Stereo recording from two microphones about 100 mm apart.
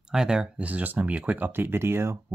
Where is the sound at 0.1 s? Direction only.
5° right (ahead or behind).